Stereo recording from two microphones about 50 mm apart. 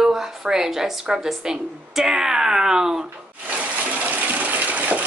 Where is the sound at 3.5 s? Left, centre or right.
Right.